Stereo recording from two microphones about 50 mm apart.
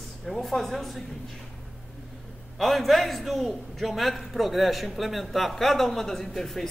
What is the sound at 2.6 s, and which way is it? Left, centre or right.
A man's voice, centre.